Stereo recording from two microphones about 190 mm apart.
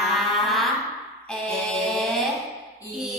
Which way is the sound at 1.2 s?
Centre (ahead or behind).